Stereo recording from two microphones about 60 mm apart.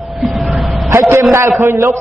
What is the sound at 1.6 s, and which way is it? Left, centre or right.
Speech, right.